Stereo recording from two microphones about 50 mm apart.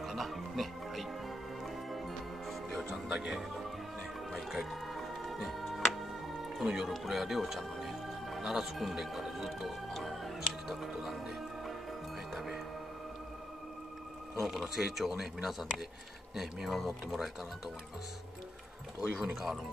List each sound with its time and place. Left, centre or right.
0.0 s music: centre
2.9 s music: centre
3.3 s speech: centre
4.5 s music: centre
6.9 s speech: centre
12.4 s music: centre
14.4 s speech: centre
19.0 s speech: centre